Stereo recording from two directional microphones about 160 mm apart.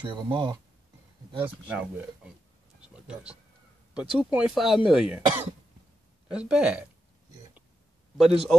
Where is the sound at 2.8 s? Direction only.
5° right (ahead or behind).